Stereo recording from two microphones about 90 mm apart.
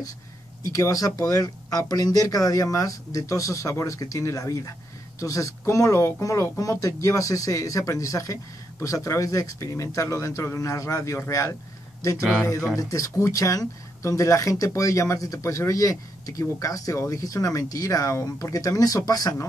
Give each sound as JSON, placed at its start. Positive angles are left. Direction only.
{"t": 0.7, "sound": "speech", "side_deg": 35}
{"t": 12.7, "sound": "speech", "side_deg": 40}